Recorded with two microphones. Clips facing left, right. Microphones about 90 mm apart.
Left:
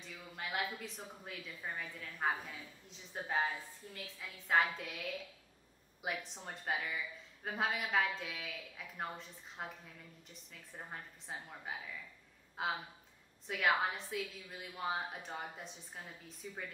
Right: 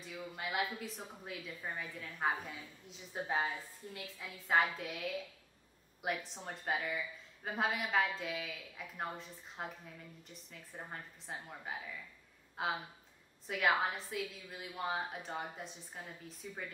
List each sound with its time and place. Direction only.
0.0 s a woman's voice: 5° right (ahead or behind)